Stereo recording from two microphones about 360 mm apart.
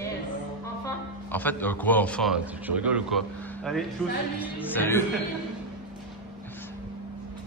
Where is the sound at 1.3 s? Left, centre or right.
Centre.